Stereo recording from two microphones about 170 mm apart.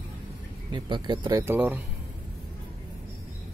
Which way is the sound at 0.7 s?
25° right (ahead or behind).